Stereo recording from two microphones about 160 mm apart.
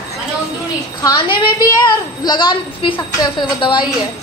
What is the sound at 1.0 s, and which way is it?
A woman's voice, 25° left (ahead or behind).